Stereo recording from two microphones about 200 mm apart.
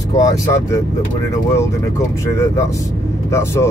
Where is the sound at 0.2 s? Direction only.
15° left (ahead or behind).